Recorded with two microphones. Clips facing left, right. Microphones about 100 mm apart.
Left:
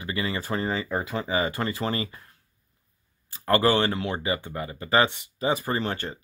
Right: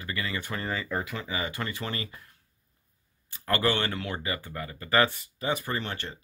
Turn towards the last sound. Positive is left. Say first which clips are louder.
# left 5 dB
turn(degrees=40)  # may be behind; listen again after turning